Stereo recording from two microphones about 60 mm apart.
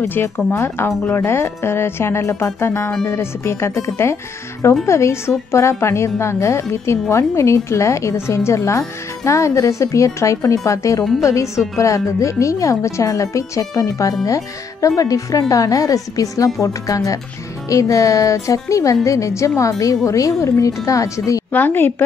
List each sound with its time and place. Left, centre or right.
0.6 s a woman's voice: left
21.5 s a woman's voice: left